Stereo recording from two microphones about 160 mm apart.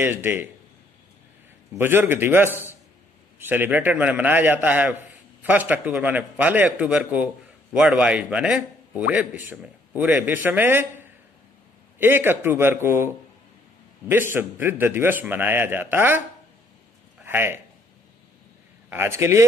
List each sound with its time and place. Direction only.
0.0 s a man's voice: 15° right (ahead or behind)
1.8 s a man's voice: 15° right (ahead or behind)
14.3 s a man's voice: 15° right (ahead or behind)
17.2 s a man's voice: 15° right (ahead or behind)
18.9 s a man's voice: 15° right (ahead or behind)